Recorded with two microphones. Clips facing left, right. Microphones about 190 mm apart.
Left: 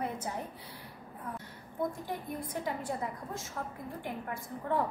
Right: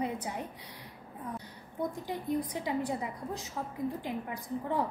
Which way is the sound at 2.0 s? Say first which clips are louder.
Right 5 dB; 15° right (ahead or behind).